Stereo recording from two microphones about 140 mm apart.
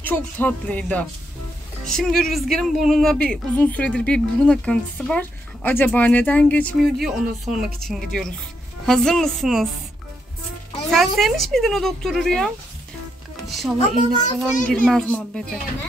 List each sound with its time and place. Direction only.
0.0 s speech: 15° left (ahead or behind)
6.8 s speech: centre (ahead or behind)
11.1 s speech: centre (ahead or behind)
13.5 s music: centre (ahead or behind)
13.9 s a child's voice: 60° left (ahead or behind)
14.7 s speech: 5° left (ahead or behind)